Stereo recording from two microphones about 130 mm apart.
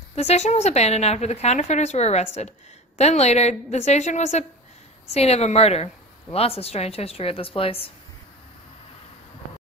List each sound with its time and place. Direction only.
0.1 s a woman's voice: 55° left (ahead or behind)
5.0 s a woman's voice: 55° left (ahead or behind)